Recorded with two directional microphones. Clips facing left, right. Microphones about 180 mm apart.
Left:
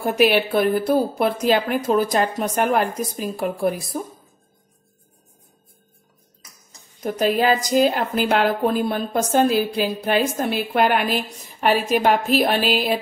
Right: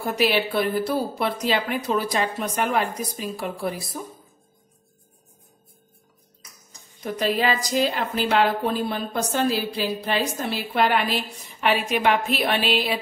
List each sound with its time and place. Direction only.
0.0 s speech: 55° left (ahead or behind)
7.0 s a woman's voice: 50° left (ahead or behind)